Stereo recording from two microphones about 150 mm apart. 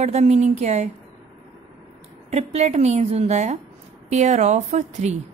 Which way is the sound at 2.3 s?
45° right (ahead or behind).